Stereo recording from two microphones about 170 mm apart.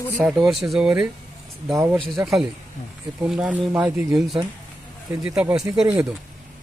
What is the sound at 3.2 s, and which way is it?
Speech, 5° right (ahead or behind).